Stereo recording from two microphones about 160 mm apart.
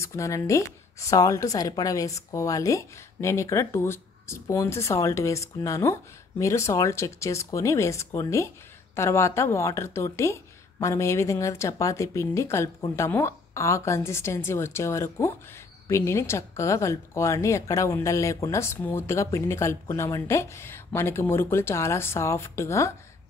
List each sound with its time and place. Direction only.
0.0 s a woman's voice: 20° left (ahead or behind)